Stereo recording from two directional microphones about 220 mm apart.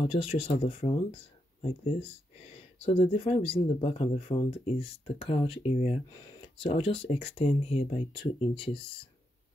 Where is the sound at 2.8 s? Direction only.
25° left (ahead or behind).